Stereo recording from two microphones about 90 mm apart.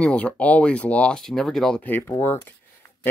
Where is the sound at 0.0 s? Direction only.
15° left (ahead or behind).